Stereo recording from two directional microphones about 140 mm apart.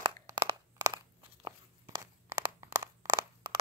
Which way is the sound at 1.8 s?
25° right (ahead or behind).